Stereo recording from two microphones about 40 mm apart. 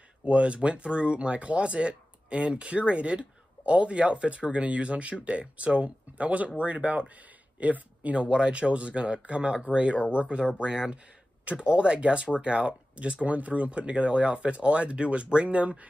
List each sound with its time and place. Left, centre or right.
0.2 s speech: right
8.2 s speech: right